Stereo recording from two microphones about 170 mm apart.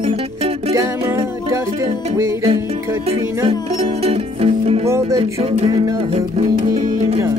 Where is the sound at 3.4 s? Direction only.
35° right (ahead or behind).